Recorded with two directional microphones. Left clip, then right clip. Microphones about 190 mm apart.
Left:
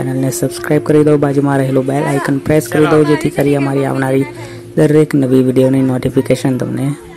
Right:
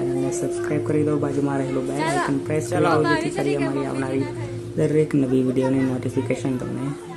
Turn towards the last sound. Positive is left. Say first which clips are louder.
# left 10 dB
turn(degrees=35)  # may be behind; listen again after turning